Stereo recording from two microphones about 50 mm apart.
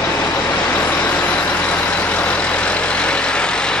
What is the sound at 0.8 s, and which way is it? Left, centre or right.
Vehicle, left.